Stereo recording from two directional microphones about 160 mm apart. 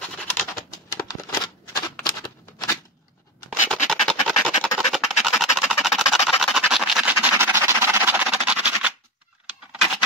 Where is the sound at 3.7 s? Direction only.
5° left (ahead or behind).